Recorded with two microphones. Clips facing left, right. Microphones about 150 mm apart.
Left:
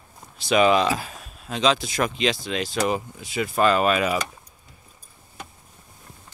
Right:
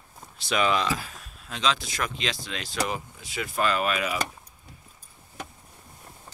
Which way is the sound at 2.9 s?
25° left (ahead or behind).